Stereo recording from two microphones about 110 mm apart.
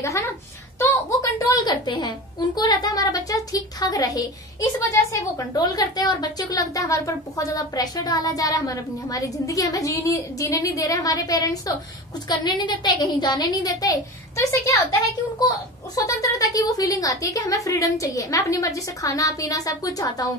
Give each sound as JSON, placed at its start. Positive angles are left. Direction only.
{"t": 1.5, "sound": "a woman's voice", "side_deg": 40}